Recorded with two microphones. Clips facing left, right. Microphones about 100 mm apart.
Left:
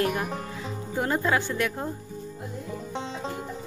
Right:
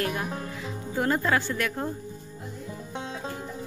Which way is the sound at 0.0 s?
25° left (ahead or behind).